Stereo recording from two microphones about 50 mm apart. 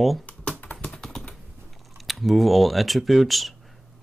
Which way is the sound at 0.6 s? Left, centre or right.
Left.